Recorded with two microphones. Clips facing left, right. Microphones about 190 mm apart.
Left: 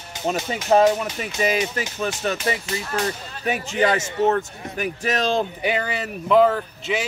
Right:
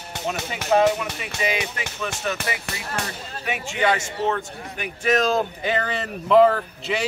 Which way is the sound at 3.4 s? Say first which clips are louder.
Left 3 dB; 35° left (ahead or behind).